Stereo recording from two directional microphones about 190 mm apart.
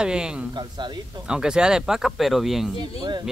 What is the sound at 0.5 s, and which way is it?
Speech, 20° right (ahead or behind).